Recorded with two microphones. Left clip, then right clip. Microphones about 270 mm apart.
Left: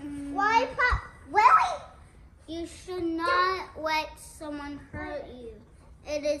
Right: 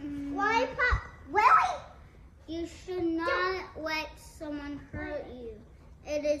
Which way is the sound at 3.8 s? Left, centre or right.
Centre.